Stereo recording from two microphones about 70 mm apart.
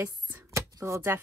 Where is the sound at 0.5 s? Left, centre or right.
Right.